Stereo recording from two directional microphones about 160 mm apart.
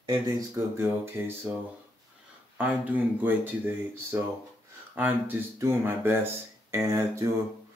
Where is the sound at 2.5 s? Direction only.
10° right (ahead or behind).